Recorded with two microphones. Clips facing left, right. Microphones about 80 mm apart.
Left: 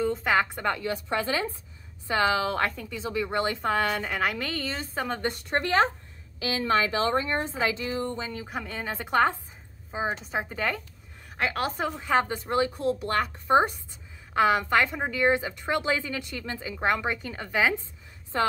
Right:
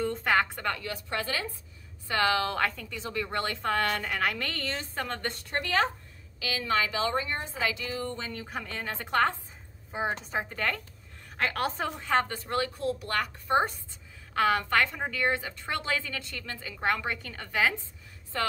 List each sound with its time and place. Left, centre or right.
0.0 s a woman's voice: centre
5.6 s a woman's voice: left
8.2 s a woman's voice: centre